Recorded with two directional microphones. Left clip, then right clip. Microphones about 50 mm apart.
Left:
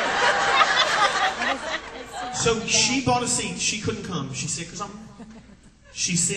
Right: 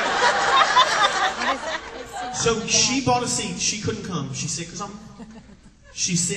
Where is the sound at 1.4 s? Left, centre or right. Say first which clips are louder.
Right 1 dB; right.